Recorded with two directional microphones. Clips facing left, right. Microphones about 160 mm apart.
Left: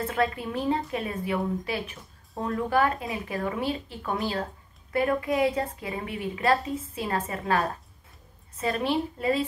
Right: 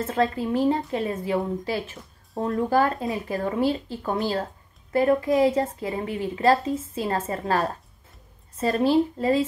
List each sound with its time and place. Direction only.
0.0 s a woman's voice: 30° right (ahead or behind)